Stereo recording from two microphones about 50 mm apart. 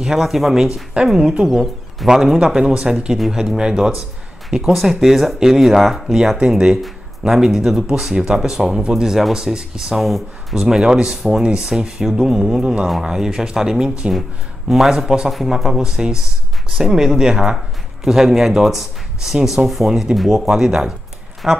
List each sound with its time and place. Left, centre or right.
0.0 s speech: centre
9.9 s speech: centre
10.6 s speech: centre